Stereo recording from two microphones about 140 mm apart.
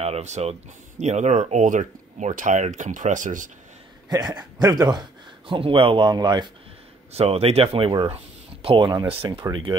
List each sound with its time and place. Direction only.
0.0 s speech: 50° right (ahead or behind); by 3.4 s 65° right (ahead or behind)
4.1 s a man's voice: 30° right (ahead or behind)
7.1 s speech: 50° right (ahead or behind)